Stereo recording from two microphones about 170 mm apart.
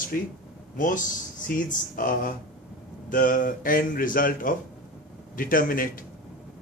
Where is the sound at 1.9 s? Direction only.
55° left (ahead or behind).